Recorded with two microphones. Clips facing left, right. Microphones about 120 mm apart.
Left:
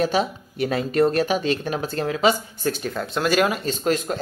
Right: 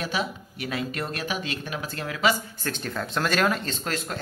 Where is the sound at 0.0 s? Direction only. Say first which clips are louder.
Left 8 dB; 35° left (ahead or behind).